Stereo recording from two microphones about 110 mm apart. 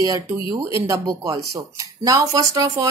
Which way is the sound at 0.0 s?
30° right (ahead or behind).